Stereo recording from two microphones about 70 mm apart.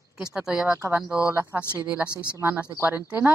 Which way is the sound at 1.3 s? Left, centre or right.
Right.